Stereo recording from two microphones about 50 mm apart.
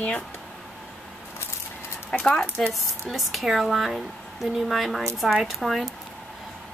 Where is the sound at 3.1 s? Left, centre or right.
Centre.